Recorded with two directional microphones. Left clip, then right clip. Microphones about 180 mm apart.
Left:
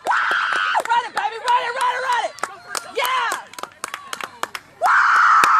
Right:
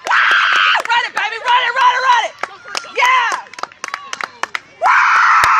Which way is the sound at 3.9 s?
40° right (ahead or behind).